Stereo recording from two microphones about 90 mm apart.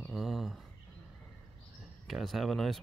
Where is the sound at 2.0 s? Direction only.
Centre (ahead or behind).